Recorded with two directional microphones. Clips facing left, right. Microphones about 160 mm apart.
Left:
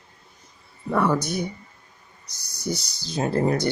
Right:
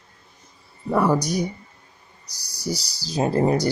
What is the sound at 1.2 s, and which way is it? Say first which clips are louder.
Speech: right 3 dB; 35° right (ahead or behind).